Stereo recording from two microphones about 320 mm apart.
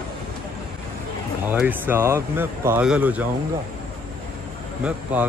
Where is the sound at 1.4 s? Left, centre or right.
Centre.